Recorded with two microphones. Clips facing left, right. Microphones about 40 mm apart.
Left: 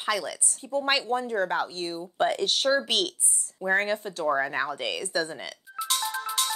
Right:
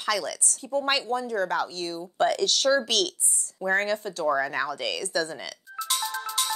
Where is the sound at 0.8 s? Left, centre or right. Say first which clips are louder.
Left 2 dB; left.